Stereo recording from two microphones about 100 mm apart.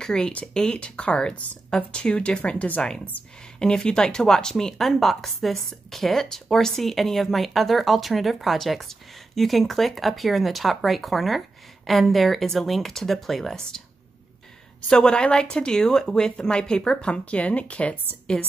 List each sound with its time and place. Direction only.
0.0 s speech: 5° left (ahead or behind)
14.9 s speech: 10° left (ahead or behind)